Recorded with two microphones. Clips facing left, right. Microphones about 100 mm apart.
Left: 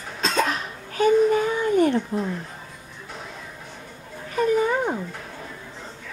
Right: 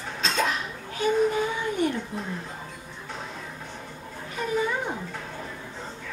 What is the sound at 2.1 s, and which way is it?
Speech, 50° left (ahead or behind).